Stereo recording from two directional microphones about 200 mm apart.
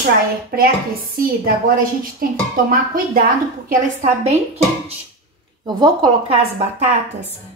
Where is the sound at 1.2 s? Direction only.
45° right (ahead or behind).